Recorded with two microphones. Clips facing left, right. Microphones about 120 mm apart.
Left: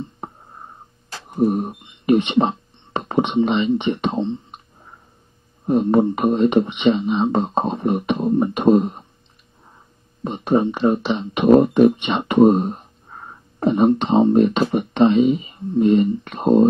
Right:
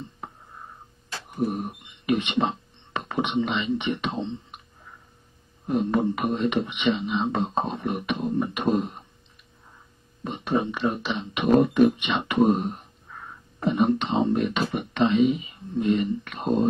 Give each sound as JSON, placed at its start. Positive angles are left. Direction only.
{"t": 0.2, "sound": "a sound", "side_deg": 40}
{"t": 1.1, "sound": "speech", "side_deg": 35}
{"t": 5.7, "sound": "speech", "side_deg": 35}
{"t": 10.2, "sound": "speech", "side_deg": 35}